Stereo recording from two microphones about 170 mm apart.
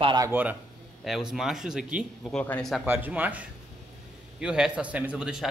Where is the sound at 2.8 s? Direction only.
10° right (ahead or behind).